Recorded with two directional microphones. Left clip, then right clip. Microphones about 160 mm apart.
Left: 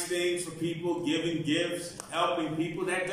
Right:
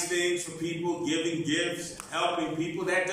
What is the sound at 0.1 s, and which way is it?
A man's voice, 5° left (ahead or behind).